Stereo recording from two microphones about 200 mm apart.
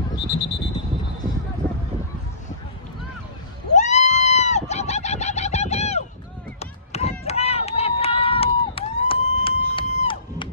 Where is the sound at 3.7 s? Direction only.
35° left (ahead or behind).